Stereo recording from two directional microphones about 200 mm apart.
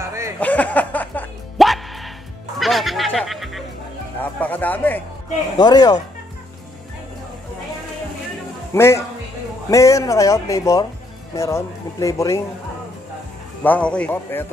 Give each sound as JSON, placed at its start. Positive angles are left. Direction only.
{"t": 0.0, "sound": "a sound", "side_deg": -15}
{"t": 0.4, "sound": "music", "side_deg": 5}
{"t": 4.2, "sound": "speech", "side_deg": 10}
{"t": 5.6, "sound": "speech", "side_deg": 20}
{"t": 8.7, "sound": "speech", "side_deg": 15}
{"t": 13.7, "sound": "speech", "side_deg": 5}